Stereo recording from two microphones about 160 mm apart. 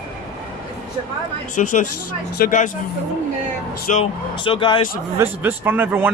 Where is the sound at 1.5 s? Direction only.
50° left (ahead or behind).